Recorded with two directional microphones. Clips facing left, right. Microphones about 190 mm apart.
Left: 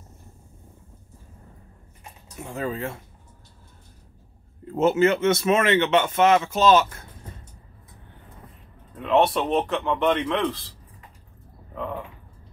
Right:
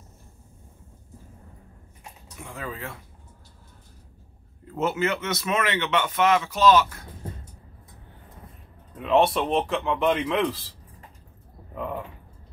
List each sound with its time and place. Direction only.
2.5 s speech: 25° left (ahead or behind)
4.7 s speech: 25° left (ahead or behind)
8.9 s a man's voice: centre (ahead or behind)